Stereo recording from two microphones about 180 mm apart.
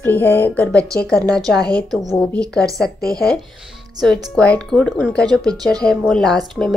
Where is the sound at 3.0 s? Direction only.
20° right (ahead or behind).